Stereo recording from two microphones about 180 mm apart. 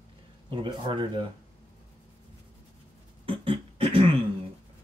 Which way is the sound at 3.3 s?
30° right (ahead or behind).